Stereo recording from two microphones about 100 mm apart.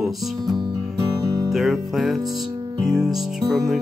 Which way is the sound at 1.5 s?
Centre (ahead or behind).